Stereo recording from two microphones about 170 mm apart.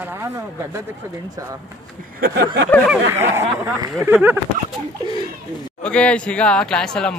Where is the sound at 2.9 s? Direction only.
15° right (ahead or behind).